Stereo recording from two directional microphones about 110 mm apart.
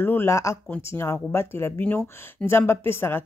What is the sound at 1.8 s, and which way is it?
Speech, 10° left (ahead or behind).